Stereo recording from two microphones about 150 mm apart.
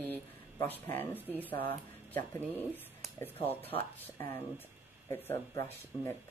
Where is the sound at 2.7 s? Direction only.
10° left (ahead or behind).